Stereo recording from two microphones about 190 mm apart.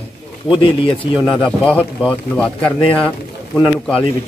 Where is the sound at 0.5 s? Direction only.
25° left (ahead or behind).